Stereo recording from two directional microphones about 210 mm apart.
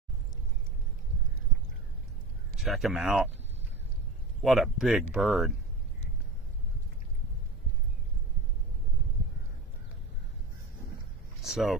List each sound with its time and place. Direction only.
2.5 s speech: centre (ahead or behind)
4.4 s speech: centre (ahead or behind)
11.4 s vehicle: centre (ahead or behind)